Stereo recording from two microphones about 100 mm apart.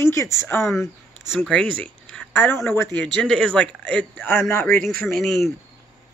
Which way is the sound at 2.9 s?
5° left (ahead or behind).